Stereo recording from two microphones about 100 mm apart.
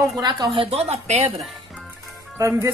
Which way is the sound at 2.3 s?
30° right (ahead or behind).